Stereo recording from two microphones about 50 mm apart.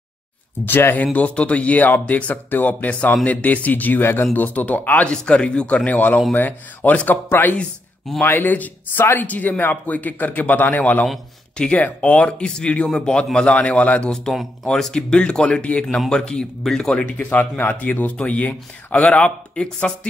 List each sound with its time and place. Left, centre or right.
0.7 s speech: left
1.1 s speech: left
4.0 s speech: left
5.0 s speech: left
5.9 s speech: left
7.2 s speech: left
11.5 s speech: centre
11.8 s speech: left
13.6 s speech: left
14.0 s speech: centre
14.3 s speech: centre
14.7 s speech: centre
16.9 s speech: left
17.4 s speech: left; by 20.1 s centre